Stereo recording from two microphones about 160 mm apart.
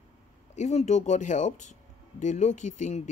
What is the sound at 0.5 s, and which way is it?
Speech, 45° left (ahead or behind).